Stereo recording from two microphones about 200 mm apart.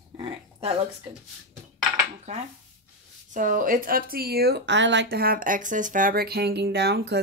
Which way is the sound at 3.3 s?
40° right (ahead or behind).